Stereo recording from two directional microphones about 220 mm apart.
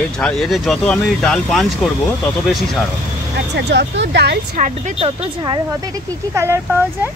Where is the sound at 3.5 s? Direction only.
50° right (ahead or behind); by 7.1 s 10° right (ahead or behind).